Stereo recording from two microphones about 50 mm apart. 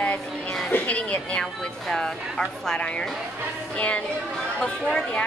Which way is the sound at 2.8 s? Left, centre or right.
Left.